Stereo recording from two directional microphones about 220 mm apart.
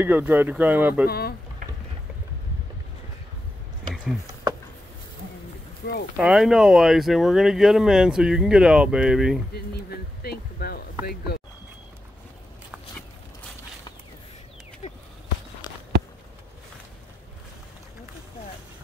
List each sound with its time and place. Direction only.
0.0 s speech: 10° right (ahead or behind)
1.0 s speech: 45° left (ahead or behind)
5.8 s speech: 50° left (ahead or behind)
6.1 s speech: 5° right (ahead or behind)
9.5 s speech: 45° left (ahead or behind)
14.8 s a sound: 30° left (ahead or behind)